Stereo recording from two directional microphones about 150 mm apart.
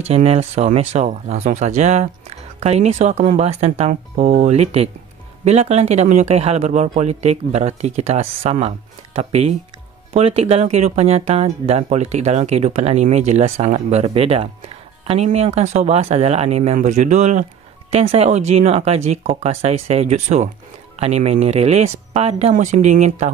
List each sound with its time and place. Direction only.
0.0 s speech: 40° right (ahead or behind)
4.2 s speech: 70° right (ahead or behind)
4.5 s speech: 45° right (ahead or behind)